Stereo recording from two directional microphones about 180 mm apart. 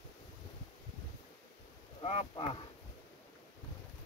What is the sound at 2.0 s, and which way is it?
Speech, 30° left (ahead or behind).